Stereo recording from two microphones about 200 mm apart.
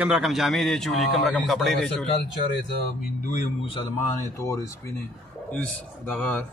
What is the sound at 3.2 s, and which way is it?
Speech, 35° left (ahead or behind).